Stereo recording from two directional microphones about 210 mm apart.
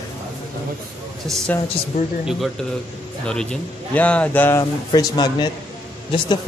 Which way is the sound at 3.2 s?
5° left (ahead or behind).